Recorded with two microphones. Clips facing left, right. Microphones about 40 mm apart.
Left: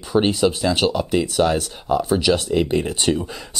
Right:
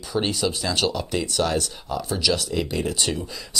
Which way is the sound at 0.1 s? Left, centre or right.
Left.